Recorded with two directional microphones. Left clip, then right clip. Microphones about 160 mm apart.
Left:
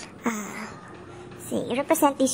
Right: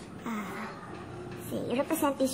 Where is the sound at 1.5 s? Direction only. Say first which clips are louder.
Left 7 dB; 45° left (ahead or behind).